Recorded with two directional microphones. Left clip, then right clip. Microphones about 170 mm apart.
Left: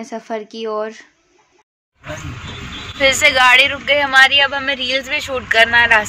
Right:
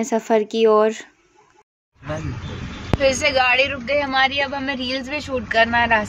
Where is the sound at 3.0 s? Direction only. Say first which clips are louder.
Left 6 dB; 5° right (ahead or behind).